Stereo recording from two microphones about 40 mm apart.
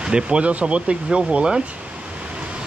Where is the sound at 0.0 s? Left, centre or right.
Right.